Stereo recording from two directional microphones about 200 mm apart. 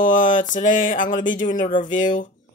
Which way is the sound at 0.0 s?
40° left (ahead or behind).